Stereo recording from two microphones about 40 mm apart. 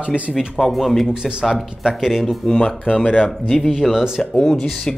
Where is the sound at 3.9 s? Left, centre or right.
Centre.